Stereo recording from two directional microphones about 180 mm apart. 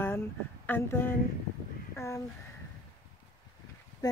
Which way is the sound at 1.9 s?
15° left (ahead or behind).